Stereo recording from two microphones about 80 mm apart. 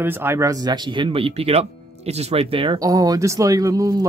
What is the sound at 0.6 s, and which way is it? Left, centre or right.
Speech, right.